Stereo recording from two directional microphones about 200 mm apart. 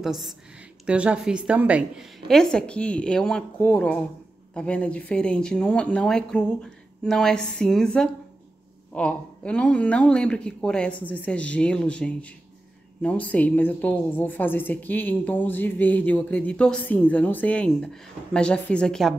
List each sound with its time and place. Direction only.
0.0 s a woman's voice: centre (ahead or behind)